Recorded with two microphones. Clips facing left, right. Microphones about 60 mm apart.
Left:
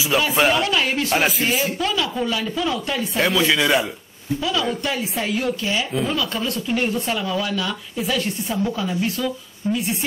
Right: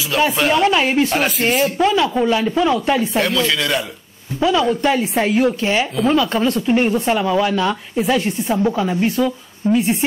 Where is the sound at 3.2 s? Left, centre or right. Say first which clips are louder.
Right 1 dB; centre.